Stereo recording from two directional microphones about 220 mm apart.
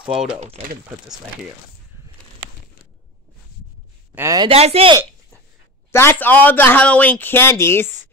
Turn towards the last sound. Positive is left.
turn(degrees=10)  # may be behind; listen again after turning